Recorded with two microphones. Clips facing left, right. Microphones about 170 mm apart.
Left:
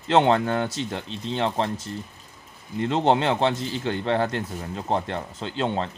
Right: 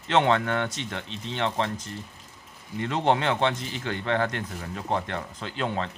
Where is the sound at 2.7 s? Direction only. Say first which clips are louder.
Left 3 dB; 30° left (ahead or behind).